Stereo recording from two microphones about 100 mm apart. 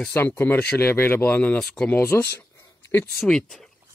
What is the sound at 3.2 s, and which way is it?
Speech, 5° left (ahead or behind).